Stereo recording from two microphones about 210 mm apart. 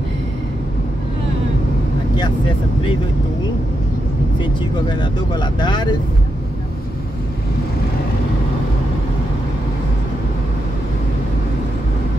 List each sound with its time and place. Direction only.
4.4 s speech: 20° left (ahead or behind)